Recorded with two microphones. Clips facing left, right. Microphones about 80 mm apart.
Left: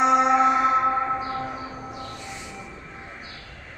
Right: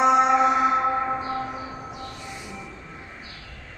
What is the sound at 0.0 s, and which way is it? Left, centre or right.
Music, centre.